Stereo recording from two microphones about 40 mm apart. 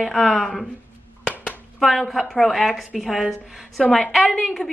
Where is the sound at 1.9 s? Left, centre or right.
Centre.